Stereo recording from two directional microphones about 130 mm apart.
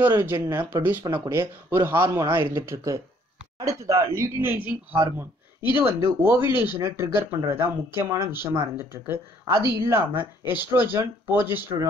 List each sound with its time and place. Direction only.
0.0 s speech: 15° right (ahead or behind)